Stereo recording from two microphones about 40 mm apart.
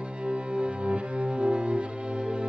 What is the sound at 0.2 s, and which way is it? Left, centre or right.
Music, right.